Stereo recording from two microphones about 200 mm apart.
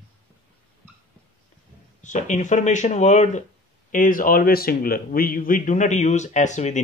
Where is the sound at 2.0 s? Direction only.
40° left (ahead or behind).